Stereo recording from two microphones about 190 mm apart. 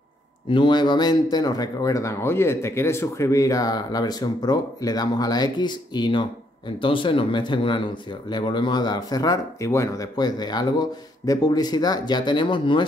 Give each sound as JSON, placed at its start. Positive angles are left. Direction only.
{"t": 0.5, "sound": "speech", "side_deg": 25}